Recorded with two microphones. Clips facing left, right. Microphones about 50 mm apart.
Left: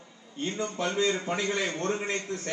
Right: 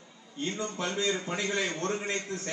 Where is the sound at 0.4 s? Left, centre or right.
Left.